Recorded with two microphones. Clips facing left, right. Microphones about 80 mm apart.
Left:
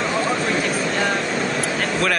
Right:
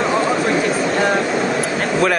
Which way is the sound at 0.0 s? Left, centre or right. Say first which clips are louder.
Right 4 dB; centre.